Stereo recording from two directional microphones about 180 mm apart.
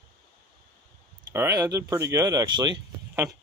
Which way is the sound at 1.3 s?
15° right (ahead or behind).